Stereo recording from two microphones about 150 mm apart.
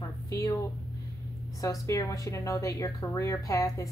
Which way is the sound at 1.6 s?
20° left (ahead or behind).